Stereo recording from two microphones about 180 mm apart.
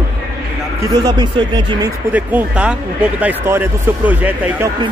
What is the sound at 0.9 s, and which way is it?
Speech, 25° right (ahead or behind).